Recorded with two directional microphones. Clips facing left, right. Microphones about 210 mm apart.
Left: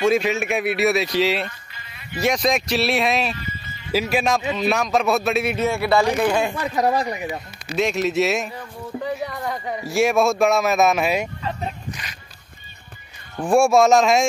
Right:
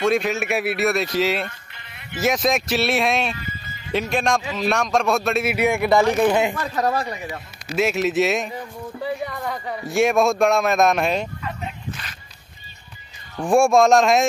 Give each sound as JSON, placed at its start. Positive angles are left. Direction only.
{"t": 0.0, "sound": "speech", "side_deg": 0}
{"t": 5.6, "sound": "speech", "side_deg": -15}
{"t": 6.5, "sound": "speech", "side_deg": 15}
{"t": 7.7, "sound": "speech", "side_deg": -5}
{"t": 9.5, "sound": "speech", "side_deg": 15}
{"t": 9.8, "sound": "speech", "side_deg": 0}
{"t": 13.4, "sound": "speech", "side_deg": 0}